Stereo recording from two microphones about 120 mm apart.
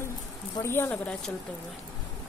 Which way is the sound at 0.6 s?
20° left (ahead or behind).